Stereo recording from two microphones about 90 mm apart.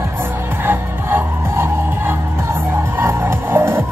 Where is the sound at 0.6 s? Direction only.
25° right (ahead or behind).